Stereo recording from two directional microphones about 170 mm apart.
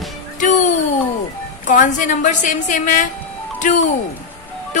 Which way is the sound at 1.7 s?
50° left (ahead or behind).